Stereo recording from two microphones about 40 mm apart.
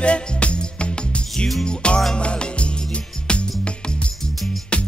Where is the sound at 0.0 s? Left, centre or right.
Left.